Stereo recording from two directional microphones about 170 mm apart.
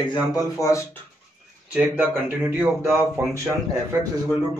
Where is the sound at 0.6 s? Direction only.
15° left (ahead or behind).